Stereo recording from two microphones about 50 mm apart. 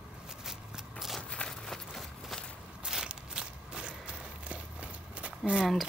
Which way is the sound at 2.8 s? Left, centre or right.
Centre.